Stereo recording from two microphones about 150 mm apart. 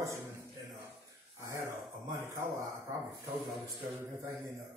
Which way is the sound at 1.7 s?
20° right (ahead or behind).